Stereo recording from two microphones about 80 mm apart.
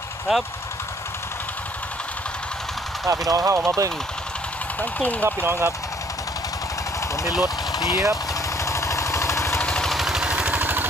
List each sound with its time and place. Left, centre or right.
0.3 s speech: centre
3.1 s speech: right
5.2 s speech: right
7.7 s vehicle: left
8.6 s vehicle: left
9.6 s vehicle: centre
9.8 s vehicle: centre
10.6 s vehicle: right